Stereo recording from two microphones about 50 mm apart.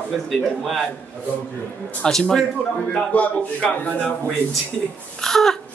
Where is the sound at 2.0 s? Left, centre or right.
Centre.